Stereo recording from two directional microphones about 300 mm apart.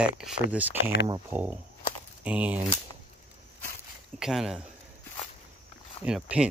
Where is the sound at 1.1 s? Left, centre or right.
Centre.